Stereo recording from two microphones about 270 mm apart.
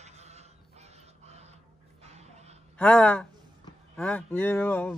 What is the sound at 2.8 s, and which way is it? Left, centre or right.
Speech, centre.